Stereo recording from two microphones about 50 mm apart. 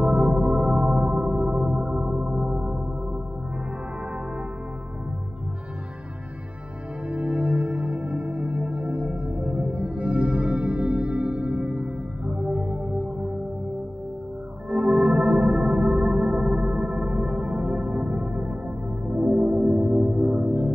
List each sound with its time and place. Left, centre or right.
0.0 s music: right
7.1 s music: right
14.7 s music: right